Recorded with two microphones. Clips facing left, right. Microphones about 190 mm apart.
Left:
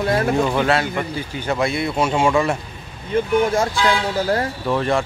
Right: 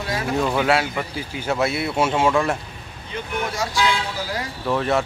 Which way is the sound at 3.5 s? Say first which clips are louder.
Left 4 dB; 50° left (ahead or behind).